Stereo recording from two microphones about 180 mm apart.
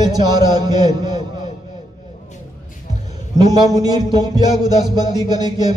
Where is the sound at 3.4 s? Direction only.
20° right (ahead or behind).